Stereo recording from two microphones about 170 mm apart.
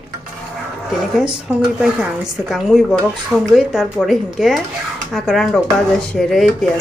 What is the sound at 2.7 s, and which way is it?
Speech, 5° right (ahead or behind).